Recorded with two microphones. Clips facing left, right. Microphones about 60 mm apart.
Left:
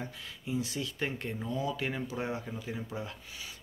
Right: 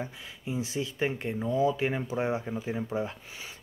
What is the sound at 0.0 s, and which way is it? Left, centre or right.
Speech, right.